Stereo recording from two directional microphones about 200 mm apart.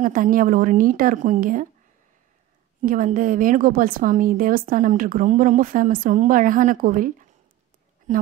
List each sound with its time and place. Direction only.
0.0 s a woman's voice: 45° right (ahead or behind)
2.8 s a woman's voice: 40° right (ahead or behind)